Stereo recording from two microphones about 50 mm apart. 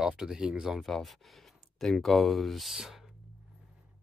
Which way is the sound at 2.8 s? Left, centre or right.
Centre.